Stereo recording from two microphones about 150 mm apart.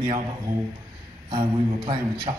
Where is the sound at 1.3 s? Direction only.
30° right (ahead or behind).